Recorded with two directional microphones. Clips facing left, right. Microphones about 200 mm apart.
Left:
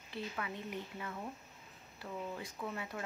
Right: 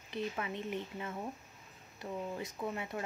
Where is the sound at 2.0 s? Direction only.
25° right (ahead or behind).